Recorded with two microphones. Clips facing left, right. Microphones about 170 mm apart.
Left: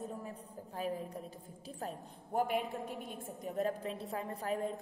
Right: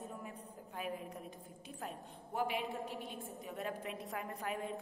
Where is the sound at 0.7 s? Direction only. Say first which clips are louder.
Left 4 dB; 35° left (ahead or behind).